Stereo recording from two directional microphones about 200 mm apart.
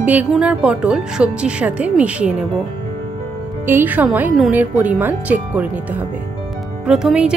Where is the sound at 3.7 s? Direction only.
10° right (ahead or behind).